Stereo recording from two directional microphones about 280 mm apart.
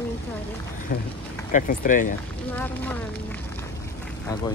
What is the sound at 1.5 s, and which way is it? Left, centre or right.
Speech, left.